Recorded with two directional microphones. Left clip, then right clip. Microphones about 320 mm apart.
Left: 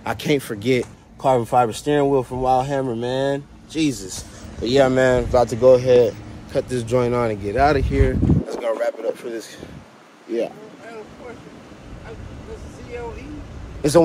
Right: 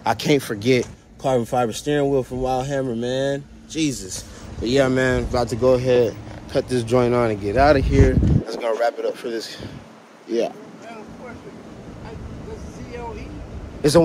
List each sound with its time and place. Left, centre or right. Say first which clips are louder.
0.0 s speech: right 2 dB; centre
1.2 s speech: left 3 dB; centre
2.0 s speech: left 2 dB; left
2.4 s speech: left 4 dB; centre
4.6 s speech: left 3 dB; centre
13.8 s speech: even; centre